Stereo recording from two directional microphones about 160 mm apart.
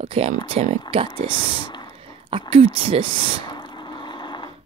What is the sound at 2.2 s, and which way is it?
Speech, 35° right (ahead or behind).